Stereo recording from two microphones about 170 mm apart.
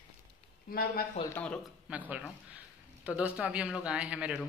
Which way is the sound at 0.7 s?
60° left (ahead or behind).